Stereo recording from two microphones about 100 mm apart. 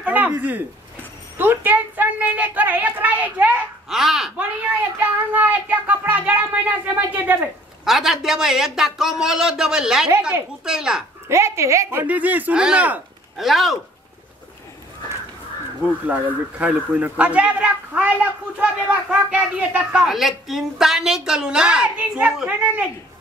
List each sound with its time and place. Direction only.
0.0 s a sound: 15° right (ahead or behind)
3.9 s speech: 5° right (ahead or behind)
5.0 s speech: 15° right (ahead or behind)
7.8 s speech: 5° right (ahead or behind)
11.2 s speech: 30° right (ahead or behind)
12.0 s speech: 15° right (ahead or behind)
13.4 s speech: centre (ahead or behind)
15.8 s speech: 15° right (ahead or behind)
20.0 s speech: 5° right (ahead or behind)